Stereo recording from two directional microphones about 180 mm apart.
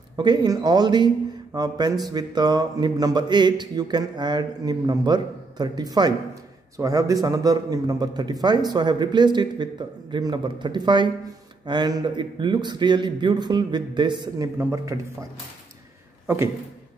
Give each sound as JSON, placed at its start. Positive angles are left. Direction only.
{"t": 0.1, "sound": "a man's voice", "side_deg": -25}